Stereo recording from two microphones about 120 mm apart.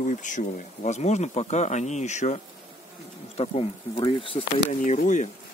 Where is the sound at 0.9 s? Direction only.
70° left (ahead or behind).